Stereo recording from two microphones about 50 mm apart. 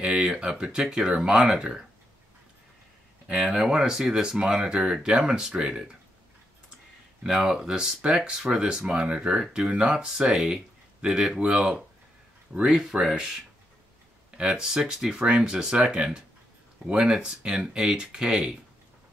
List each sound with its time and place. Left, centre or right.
0.2 s speech: centre
3.3 s speech: centre
7.2 s speech: centre
10.3 s a sound: right
11.1 s speech: centre
14.3 s speech: centre